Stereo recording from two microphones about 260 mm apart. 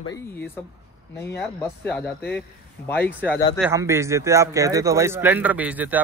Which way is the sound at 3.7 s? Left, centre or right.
Centre.